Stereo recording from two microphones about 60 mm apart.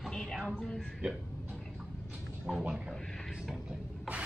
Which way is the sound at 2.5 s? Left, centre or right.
Centre.